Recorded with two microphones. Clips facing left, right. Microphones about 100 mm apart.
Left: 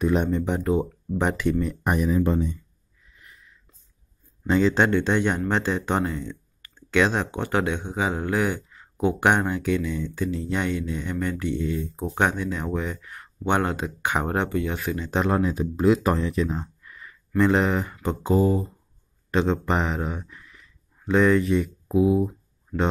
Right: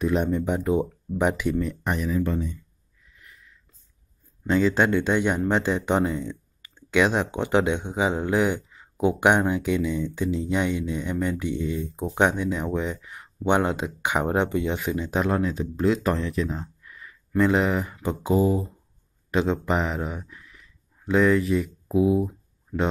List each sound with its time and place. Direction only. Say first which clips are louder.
0.0 s speech: left 1 dB; centre (ahead or behind)
0.5 s speech: even; 10° right (ahead or behind)
1.8 s speech: left 3 dB; 15° left (ahead or behind)
4.5 s speech: left 1 dB; centre (ahead or behind)
15.1 s speech: left 2 dB; centre (ahead or behind)